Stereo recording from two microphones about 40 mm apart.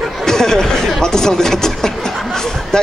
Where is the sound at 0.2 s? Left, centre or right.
Centre.